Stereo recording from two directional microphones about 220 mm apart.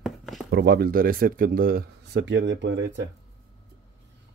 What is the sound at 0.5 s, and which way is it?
Speech, 45° right (ahead or behind).